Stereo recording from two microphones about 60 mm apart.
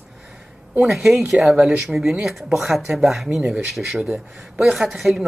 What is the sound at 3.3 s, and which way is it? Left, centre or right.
Speech, centre.